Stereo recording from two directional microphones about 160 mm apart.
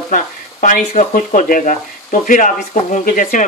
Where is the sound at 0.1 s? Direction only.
55° left (ahead or behind).